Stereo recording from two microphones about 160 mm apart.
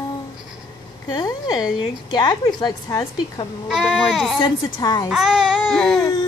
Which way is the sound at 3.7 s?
5° right (ahead or behind).